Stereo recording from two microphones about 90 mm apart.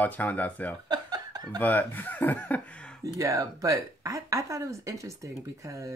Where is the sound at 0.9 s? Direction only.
45° right (ahead or behind).